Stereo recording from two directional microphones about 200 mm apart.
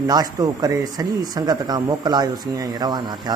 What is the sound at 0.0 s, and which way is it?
Speech, 20° right (ahead or behind).